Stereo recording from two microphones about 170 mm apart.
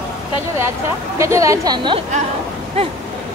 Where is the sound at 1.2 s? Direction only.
20° right (ahead or behind).